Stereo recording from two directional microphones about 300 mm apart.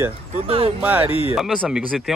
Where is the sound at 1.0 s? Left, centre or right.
Centre.